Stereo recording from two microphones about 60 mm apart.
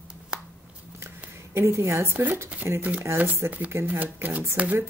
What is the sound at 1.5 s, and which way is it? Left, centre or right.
Speech, right.